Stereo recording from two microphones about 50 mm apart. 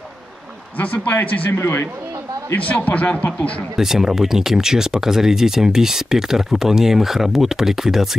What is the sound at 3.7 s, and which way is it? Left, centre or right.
Speech, centre.